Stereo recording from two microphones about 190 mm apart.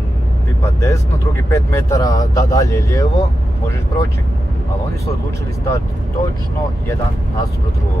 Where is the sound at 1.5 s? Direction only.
15° left (ahead or behind).